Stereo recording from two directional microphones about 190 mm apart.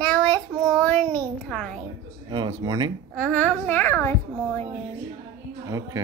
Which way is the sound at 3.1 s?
5° left (ahead or behind).